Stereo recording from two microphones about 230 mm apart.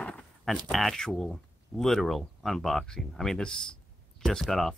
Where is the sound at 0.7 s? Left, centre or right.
Centre.